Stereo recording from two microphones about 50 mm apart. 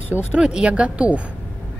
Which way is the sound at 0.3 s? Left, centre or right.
Centre.